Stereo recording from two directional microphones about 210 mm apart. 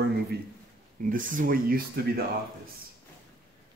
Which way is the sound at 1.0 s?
40° right (ahead or behind).